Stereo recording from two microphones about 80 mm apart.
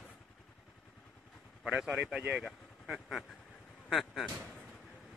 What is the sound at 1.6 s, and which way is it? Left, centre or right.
Speech, centre.